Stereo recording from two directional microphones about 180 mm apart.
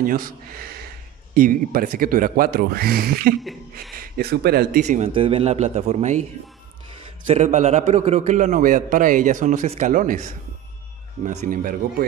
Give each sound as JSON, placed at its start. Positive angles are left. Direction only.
{"t": 0.0, "sound": "a man's voice", "side_deg": -50}
{"t": 4.8, "sound": "a man's voice", "side_deg": -40}
{"t": 7.2, "sound": "a man's voice", "side_deg": -40}
{"t": 11.2, "sound": "a man's voice", "side_deg": -50}